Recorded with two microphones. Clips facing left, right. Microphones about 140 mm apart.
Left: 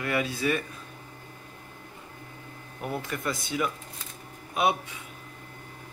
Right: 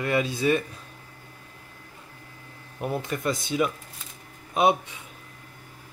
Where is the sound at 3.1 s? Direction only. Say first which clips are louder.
Right 4 dB; 20° right (ahead or behind).